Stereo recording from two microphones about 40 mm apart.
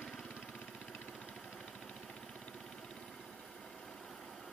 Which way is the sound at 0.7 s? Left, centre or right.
Centre.